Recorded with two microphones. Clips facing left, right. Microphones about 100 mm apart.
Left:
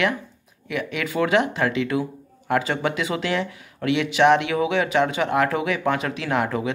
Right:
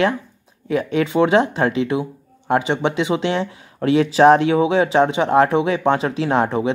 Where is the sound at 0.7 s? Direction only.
30° right (ahead or behind).